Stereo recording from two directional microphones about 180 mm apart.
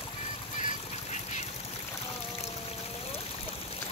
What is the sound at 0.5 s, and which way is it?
Duck, 40° left (ahead or behind).